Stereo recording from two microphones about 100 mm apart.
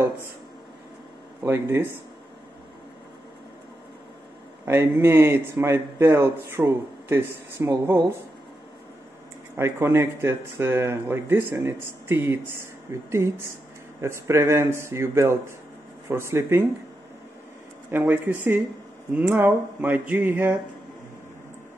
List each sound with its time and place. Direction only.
1.4 s a man's voice: 25° right (ahead or behind)
4.6 s a man's voice: 25° right (ahead or behind)
9.6 s a man's voice: 25° right (ahead or behind)
14.0 s a man's voice: 25° right (ahead or behind)
17.9 s a man's voice: 20° right (ahead or behind)